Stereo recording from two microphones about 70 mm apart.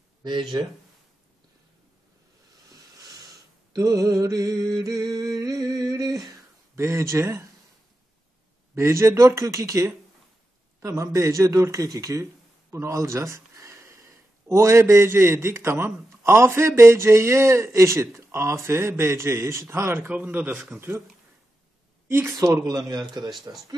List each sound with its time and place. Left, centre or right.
2.7 s a sound: right
6.7 s a man's voice: right
8.7 s a man's voice: right
20.7 s a man's voice: right
22.0 s speech: right
22.4 s a man's voice: right